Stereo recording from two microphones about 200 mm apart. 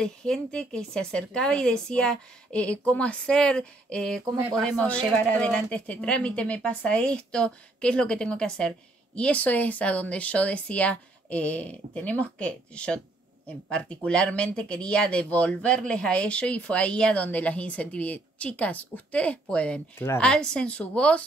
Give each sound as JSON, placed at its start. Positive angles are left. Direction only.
{"t": 0.0, "sound": "speech", "side_deg": 5}
{"t": 4.2, "sound": "speech", "side_deg": -15}
{"t": 4.6, "sound": "speech", "side_deg": 5}